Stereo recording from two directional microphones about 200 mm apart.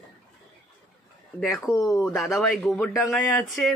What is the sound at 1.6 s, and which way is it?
Speech, 15° left (ahead or behind).